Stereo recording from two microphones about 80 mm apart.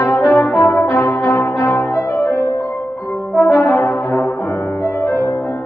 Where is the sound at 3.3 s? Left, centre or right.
Centre.